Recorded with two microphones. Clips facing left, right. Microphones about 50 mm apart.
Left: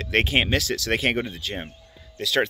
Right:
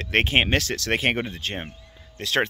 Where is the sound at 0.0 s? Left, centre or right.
Right.